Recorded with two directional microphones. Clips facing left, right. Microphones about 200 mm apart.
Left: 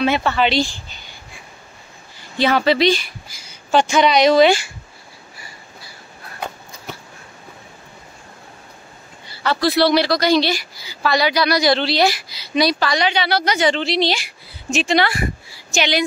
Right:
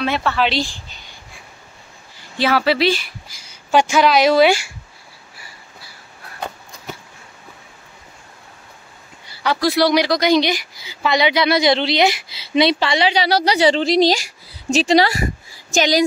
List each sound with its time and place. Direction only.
0.0 s speech: centre (ahead or behind)
2.3 s speech: 5° right (ahead or behind)
9.3 s speech: 15° right (ahead or behind); by 15.1 s 35° right (ahead or behind)